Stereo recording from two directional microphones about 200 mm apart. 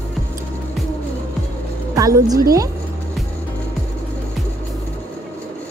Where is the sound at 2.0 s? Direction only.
15° right (ahead or behind).